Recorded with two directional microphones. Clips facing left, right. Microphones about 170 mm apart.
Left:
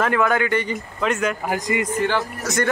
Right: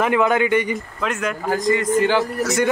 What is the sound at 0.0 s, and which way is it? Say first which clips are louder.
Speech: right 2 dB; 20° right (ahead or behind).